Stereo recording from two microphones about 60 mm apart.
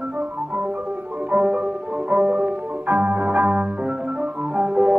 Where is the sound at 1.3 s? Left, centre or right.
Right.